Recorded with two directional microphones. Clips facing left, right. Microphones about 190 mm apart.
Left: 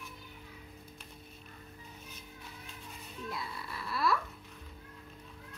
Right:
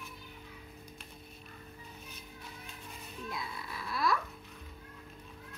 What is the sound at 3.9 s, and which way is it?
Babbling, 5° left (ahead or behind).